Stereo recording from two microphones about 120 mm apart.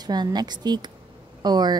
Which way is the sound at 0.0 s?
35° right (ahead or behind).